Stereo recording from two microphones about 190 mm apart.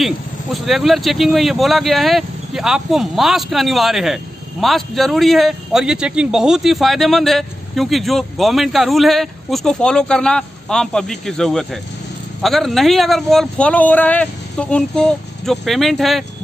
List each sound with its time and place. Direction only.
0.0 s speech: centre (ahead or behind)